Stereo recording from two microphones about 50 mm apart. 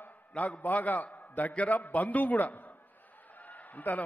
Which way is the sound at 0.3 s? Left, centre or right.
Left.